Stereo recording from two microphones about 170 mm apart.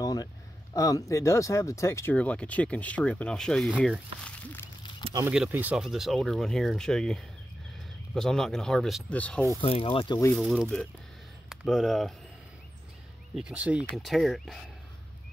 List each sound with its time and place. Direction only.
0.0 s a sound: 20° left (ahead or behind)
0.7 s speech: 20° left (ahead or behind); by 4.0 s 5° right (ahead or behind)
4.2 s a sound: 10° left (ahead or behind)
5.3 s speech: 5° right (ahead or behind); by 9.5 s 10° left (ahead or behind)
9.6 s speech: 35° left (ahead or behind)
10.3 s speech: centre (ahead or behind)
13.3 s speech: 5° right (ahead or behind)